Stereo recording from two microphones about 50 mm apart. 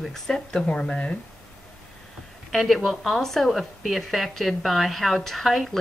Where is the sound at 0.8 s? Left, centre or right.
Left.